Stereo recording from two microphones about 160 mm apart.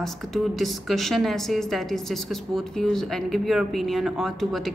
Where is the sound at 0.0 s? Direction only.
Centre (ahead or behind).